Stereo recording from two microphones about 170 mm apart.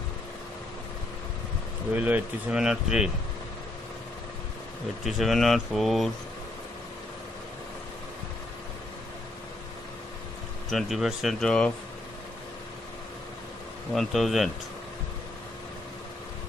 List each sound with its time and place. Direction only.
2.0 s speech: 10° right (ahead or behind)
5.0 s speech: centre (ahead or behind)
10.7 s speech: centre (ahead or behind)
13.9 s speech: centre (ahead or behind)